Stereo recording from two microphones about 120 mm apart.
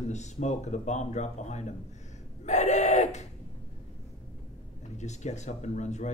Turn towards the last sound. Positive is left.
turn(degrees=75)  # may be behind; listen again after turning